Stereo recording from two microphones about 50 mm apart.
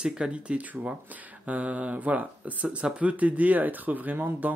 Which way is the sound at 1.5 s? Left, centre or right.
Right.